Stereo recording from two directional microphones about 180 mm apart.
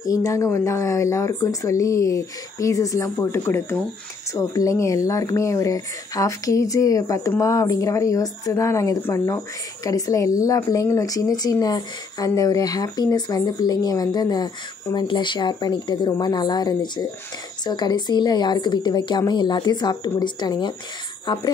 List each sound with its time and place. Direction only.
0.0 s speech: 20° left (ahead or behind)